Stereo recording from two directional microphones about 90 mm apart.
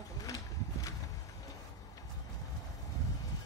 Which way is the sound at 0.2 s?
40° left (ahead or behind).